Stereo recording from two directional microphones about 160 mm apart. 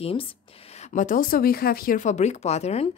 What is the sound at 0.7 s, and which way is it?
Speech, 55° left (ahead or behind).